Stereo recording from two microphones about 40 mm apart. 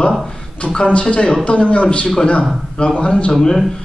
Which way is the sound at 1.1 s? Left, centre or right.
Left.